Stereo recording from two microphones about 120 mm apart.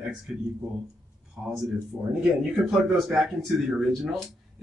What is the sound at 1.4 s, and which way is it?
Speech, 10° right (ahead or behind).